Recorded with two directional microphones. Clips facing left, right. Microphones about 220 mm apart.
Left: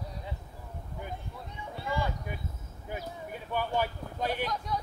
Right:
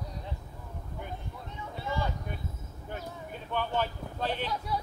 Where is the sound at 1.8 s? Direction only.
10° left (ahead or behind).